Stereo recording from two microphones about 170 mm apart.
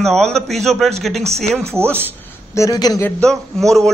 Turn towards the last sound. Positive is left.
turn(degrees=0)  # may be behind; listen again after turning